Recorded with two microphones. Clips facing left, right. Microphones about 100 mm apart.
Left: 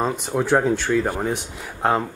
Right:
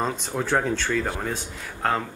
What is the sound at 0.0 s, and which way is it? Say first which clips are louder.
Speech: left 4 dB; 10° left (ahead or behind).